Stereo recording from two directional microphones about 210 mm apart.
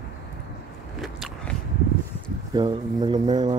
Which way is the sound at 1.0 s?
Centre (ahead or behind).